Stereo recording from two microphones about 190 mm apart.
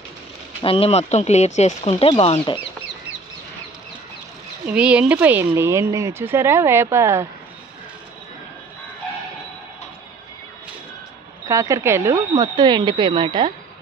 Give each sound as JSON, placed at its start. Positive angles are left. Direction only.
{"t": 0.6, "sound": "speech", "side_deg": 30}
{"t": 4.6, "sound": "speech", "side_deg": -5}
{"t": 11.4, "sound": "speech", "side_deg": -15}